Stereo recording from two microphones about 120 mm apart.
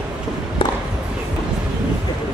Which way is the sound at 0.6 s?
45° left (ahead or behind).